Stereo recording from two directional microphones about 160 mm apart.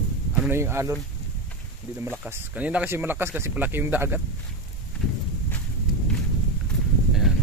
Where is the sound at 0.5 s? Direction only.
15° right (ahead or behind).